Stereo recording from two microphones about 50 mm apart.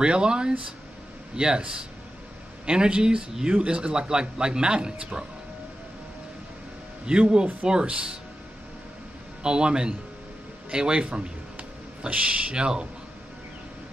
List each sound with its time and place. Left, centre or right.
0.0 s a man's voice: centre
7.1 s speech: centre
9.4 s speech: centre